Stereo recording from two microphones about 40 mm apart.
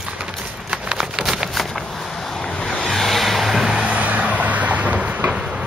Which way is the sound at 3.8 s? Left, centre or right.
Right.